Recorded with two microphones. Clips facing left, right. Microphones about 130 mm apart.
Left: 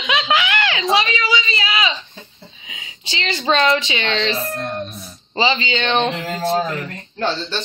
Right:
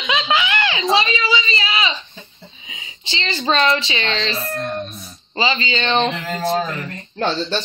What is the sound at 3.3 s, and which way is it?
Speech, 10° left (ahead or behind).